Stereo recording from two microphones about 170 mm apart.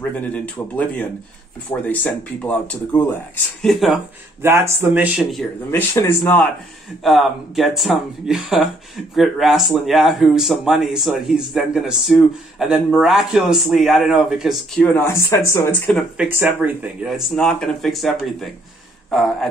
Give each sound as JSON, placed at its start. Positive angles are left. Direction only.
{"t": 0.3, "sound": "speech", "side_deg": 10}
{"t": 3.6, "sound": "speech", "side_deg": 0}
{"t": 4.4, "sound": "speech", "side_deg": -15}
{"t": 5.7, "sound": "speech", "side_deg": 15}
{"t": 7.0, "sound": "speech", "side_deg": 0}
{"t": 14.8, "sound": "speech", "side_deg": 10}
{"t": 15.9, "sound": "speech", "side_deg": 0}
{"t": 16.3, "sound": "speech", "side_deg": -10}